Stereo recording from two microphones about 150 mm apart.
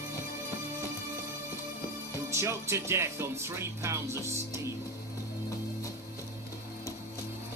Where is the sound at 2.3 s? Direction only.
20° right (ahead or behind).